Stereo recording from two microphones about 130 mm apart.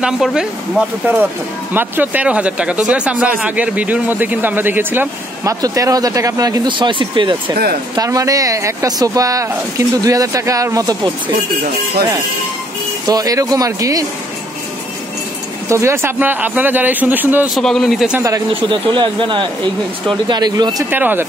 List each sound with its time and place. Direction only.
0.0 s speech: 5° right (ahead or behind); by 7.3 s 40° right (ahead or behind)
7.9 s speech: 25° right (ahead or behind)
13.0 s speech: 30° right (ahead or behind)
15.7 s speech: 20° right (ahead or behind)
17.6 s a man's voice: 5° left (ahead or behind)
18.5 s speech: 40° right (ahead or behind)
20.9 s speech: 15° right (ahead or behind)